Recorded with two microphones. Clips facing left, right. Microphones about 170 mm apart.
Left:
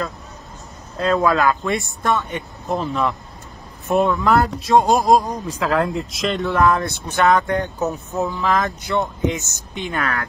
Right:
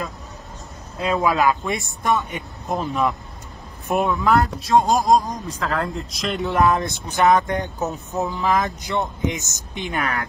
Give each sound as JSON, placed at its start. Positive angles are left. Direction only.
{"t": 0.9, "sound": "speech", "side_deg": -15}
{"t": 3.9, "sound": "speech", "side_deg": 0}
{"t": 6.4, "sound": "speech", "side_deg": -20}